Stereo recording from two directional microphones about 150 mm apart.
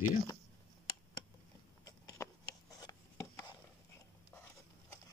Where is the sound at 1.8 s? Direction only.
25° left (ahead or behind).